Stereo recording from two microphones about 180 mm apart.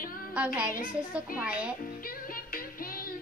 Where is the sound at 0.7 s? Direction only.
45° left (ahead or behind).